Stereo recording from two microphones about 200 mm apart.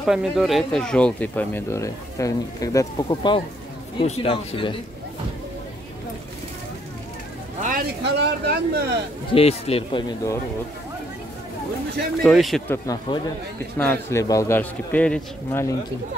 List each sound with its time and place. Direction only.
0.0 s speech: 5° right (ahead or behind); by 4.7 s 25° left (ahead or behind)
8.0 s speech: 55° right (ahead or behind)
9.3 s speech: 30° left (ahead or behind)
12.2 s speech: centre (ahead or behind)
12.6 s speech: 15° left (ahead or behind)